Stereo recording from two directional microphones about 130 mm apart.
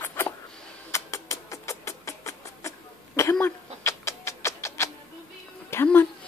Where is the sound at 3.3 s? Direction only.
20° left (ahead or behind).